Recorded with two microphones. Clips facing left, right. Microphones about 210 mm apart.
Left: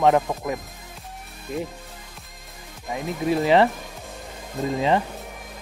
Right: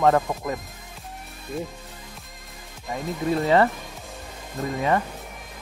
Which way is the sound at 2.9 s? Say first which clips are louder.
Left 1 dB; 10° left (ahead or behind).